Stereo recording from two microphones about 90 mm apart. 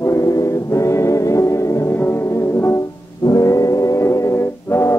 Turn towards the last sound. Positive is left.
turn(degrees=30)  # may be behind; listen again after turning